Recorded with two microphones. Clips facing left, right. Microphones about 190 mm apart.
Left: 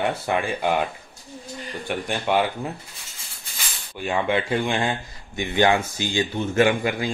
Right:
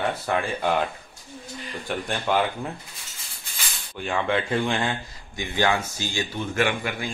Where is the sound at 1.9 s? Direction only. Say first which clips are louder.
Left 2 dB; 5° left (ahead or behind).